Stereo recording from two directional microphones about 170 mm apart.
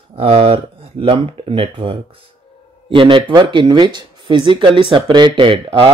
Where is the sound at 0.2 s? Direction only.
35° right (ahead or behind).